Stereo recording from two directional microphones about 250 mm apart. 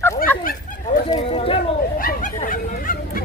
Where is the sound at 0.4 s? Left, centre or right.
Left.